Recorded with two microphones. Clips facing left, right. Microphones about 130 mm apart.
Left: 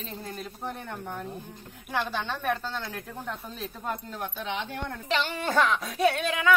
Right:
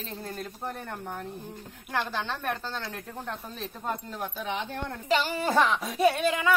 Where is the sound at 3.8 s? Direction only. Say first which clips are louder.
Right 1 dB; 5° right (ahead or behind).